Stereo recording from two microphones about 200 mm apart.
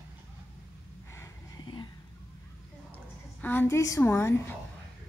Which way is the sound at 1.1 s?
20° left (ahead or behind).